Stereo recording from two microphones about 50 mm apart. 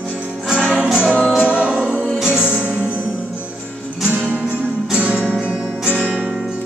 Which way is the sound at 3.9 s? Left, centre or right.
Centre.